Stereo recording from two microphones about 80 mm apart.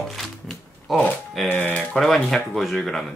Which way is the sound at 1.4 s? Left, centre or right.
Left.